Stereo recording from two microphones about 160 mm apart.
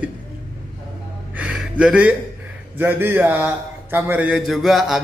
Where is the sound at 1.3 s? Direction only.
5° right (ahead or behind).